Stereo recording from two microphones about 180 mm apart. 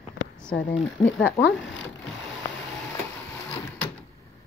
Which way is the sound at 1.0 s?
10° left (ahead or behind).